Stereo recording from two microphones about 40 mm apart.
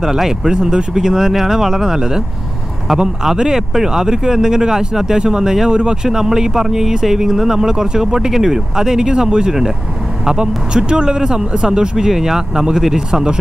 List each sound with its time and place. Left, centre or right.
0.0 s speech: centre
3.3 s speech: centre
12.1 s speech: centre